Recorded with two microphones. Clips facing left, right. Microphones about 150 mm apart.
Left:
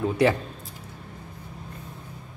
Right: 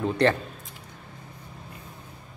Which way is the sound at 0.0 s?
5° left (ahead or behind).